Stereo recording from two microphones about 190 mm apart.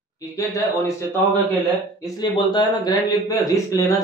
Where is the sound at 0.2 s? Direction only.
15° left (ahead or behind).